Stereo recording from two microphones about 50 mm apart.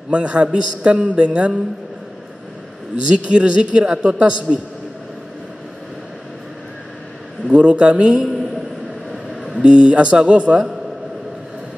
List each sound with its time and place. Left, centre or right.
0.1 s a man's voice: right
3.3 s a man's voice: right
7.4 s a man's voice: right
9.1 s a sound: centre
9.6 s a man's voice: right